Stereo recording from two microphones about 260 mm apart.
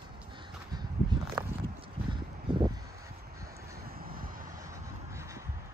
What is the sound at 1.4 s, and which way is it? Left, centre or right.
Walk, centre.